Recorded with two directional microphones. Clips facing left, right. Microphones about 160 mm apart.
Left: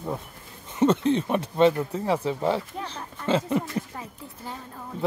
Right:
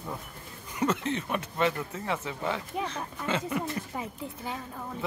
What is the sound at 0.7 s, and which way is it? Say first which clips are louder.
Speech: left 8 dB; 30° left (ahead or behind).